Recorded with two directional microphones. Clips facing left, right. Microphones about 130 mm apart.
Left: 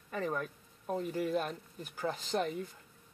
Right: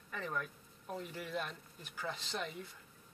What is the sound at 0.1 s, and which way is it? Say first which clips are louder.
Speech: left 6 dB; 35° left (ahead or behind).